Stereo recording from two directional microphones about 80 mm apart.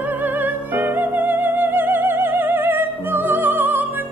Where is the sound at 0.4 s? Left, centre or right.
Right.